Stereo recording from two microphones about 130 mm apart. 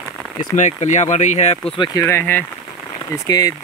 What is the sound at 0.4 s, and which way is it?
Speech, 65° left (ahead or behind).